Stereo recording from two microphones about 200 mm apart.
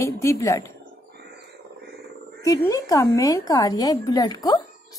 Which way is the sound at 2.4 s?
15° left (ahead or behind).